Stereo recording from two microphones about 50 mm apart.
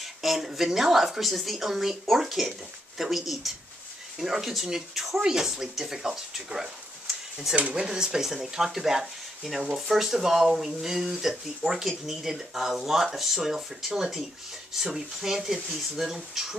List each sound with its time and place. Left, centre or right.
0.0 s speech: centre
7.5 s speech: right
7.8 s speech: centre